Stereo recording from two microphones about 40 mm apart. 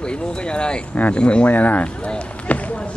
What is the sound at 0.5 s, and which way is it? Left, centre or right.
Speech, left.